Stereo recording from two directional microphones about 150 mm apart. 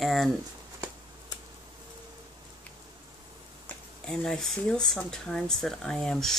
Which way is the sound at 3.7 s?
5° left (ahead or behind).